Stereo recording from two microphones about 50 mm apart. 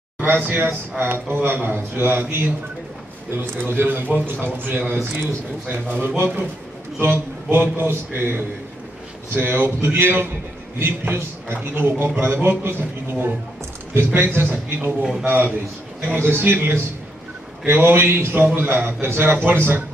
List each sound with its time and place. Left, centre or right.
0.2 s a man's voice: right
7.0 s a man's voice: right
17.6 s a man's voice: right